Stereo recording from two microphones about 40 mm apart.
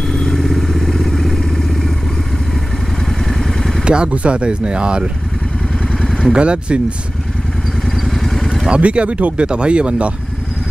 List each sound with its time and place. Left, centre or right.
0.1 s vehicle: centre
3.1 s vehicle: centre
3.8 s speech: right
5.9 s vehicle: centre
6.3 s speech: right
7.8 s vehicle: centre
8.6 s speech: right